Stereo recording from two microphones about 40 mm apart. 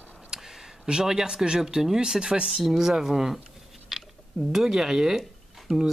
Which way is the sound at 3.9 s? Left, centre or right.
Centre.